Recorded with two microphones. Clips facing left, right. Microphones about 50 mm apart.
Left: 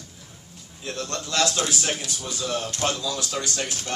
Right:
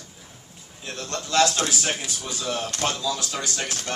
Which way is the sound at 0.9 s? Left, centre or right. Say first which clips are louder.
Right 1 dB; centre.